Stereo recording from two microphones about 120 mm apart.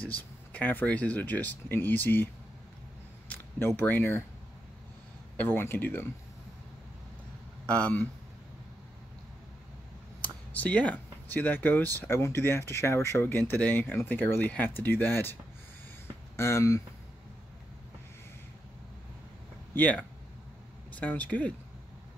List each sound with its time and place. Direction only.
0.0 s speech: 15° left (ahead or behind)
3.3 s speech: 15° left (ahead or behind)
5.4 s speech: 15° left (ahead or behind)
7.7 s speech: 10° left (ahead or behind)
10.2 s speech: 10° left (ahead or behind)
16.3 s speech: 20° left (ahead or behind)
19.7 s speech: 15° left (ahead or behind)